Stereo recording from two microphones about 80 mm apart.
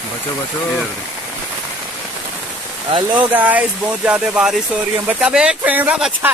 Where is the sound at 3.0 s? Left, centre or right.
Right.